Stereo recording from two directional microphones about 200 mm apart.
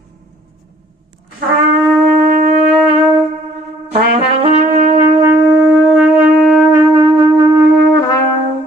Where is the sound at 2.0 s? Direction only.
40° right (ahead or behind).